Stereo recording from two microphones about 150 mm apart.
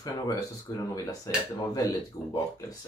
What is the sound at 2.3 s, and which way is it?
Speech, 25° left (ahead or behind).